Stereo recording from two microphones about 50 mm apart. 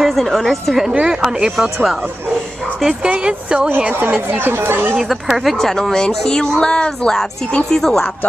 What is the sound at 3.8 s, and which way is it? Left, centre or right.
Speech, right.